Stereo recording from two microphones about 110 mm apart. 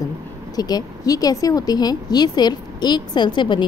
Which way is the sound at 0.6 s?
35° left (ahead or behind).